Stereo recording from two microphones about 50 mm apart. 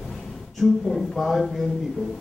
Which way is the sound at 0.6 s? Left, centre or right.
Centre.